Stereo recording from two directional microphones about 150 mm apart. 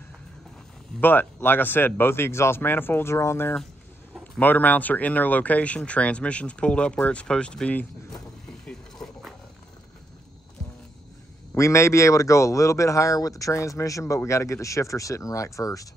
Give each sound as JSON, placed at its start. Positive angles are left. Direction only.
{"t": 1.0, "sound": "speech", "side_deg": 10}
{"t": 11.5, "sound": "speech", "side_deg": 20}